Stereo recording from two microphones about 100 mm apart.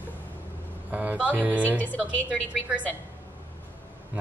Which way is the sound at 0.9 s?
15° right (ahead or behind).